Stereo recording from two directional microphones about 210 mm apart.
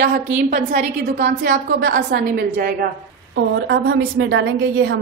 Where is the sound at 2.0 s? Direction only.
45° right (ahead or behind).